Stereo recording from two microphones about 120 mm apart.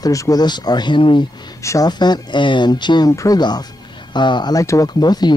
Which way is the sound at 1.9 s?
35° left (ahead or behind).